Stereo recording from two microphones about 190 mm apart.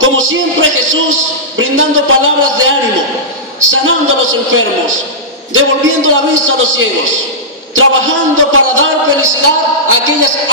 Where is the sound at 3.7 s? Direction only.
90° right.